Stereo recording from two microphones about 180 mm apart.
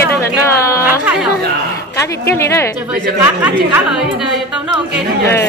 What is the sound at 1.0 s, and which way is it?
Chatter, 5° right (ahead or behind).